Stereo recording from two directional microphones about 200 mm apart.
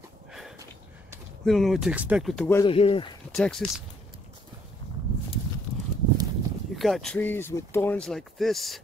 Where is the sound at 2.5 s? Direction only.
25° left (ahead or behind).